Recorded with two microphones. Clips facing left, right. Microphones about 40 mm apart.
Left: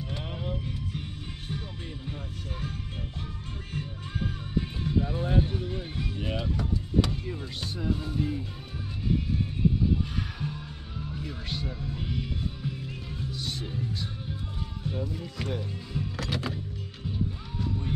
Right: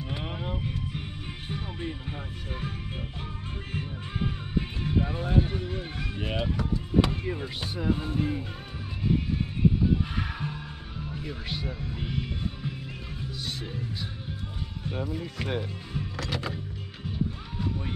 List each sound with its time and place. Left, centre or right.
0.1 s vehicle: centre
1.5 s music: centre
4.6 s music: right
5.4 s speech: centre
7.7 s music: right
11.0 s speech: centre
13.4 s music: centre
15.0 s speech: centre
15.4 s music: right
16.2 s music: centre
17.6 s music: centre